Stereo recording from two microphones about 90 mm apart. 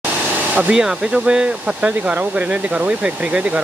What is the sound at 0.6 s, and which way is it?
Speech, 10° right (ahead or behind).